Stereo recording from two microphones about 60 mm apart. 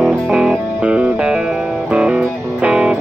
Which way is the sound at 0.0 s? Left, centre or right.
Centre.